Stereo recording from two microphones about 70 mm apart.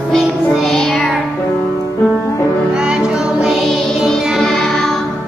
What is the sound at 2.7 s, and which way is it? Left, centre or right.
Music, centre.